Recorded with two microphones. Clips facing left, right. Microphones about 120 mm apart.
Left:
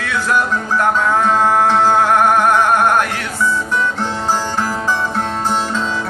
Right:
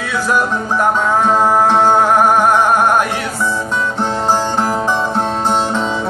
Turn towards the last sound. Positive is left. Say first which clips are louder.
# right 3 dB
turn(degrees=-20)  # may be behind; listen again after turning